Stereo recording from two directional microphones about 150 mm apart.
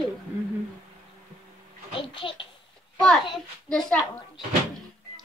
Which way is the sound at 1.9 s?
35° left (ahead or behind).